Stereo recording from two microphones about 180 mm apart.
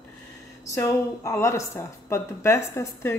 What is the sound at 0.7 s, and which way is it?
A woman's voice, 15° left (ahead or behind).